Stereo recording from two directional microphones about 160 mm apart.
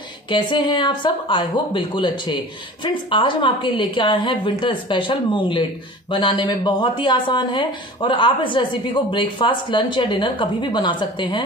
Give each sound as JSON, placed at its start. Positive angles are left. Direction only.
{"t": 0.3, "sound": "a woman's voice", "side_deg": 30}